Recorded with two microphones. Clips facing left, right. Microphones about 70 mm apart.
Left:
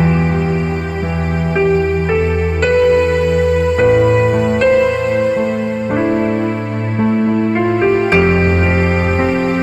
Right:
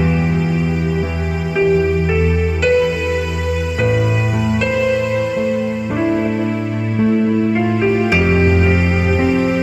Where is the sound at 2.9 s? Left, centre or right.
Left.